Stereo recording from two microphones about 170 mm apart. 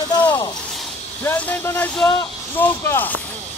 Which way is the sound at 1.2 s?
10° left (ahead or behind).